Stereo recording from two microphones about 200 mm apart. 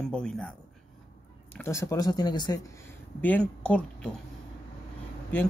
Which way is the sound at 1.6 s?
15° left (ahead or behind).